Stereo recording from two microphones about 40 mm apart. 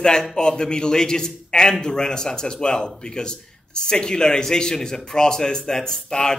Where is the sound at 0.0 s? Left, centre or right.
Centre.